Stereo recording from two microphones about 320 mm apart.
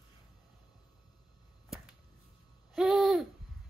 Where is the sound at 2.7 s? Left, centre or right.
Centre.